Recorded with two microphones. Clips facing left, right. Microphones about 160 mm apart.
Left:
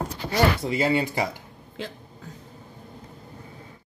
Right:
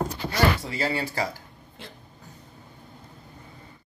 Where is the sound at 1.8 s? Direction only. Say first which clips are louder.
Left 10 dB; 90° left.